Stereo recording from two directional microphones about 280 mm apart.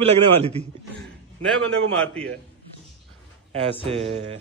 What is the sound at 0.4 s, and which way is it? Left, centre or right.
Speech, right.